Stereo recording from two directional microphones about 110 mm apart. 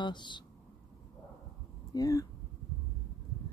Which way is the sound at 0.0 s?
45° left (ahead or behind).